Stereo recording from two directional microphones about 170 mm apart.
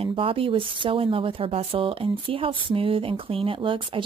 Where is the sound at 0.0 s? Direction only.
30° right (ahead or behind).